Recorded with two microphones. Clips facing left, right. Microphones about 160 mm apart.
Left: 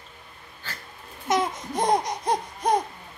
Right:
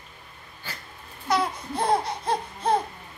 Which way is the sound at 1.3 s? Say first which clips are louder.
Left 1 dB; 20° left (ahead or behind).